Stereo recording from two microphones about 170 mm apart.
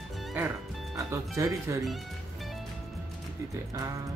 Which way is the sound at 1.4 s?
20° right (ahead or behind).